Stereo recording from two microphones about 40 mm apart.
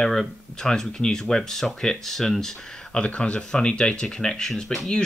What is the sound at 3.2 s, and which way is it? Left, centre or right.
Speech, left.